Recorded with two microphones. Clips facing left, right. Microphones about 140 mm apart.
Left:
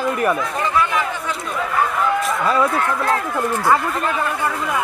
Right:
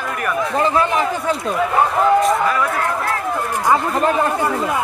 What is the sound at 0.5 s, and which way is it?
Speech, 35° right (ahead or behind).